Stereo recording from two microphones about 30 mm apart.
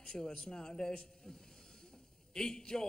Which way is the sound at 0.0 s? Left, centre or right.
Left.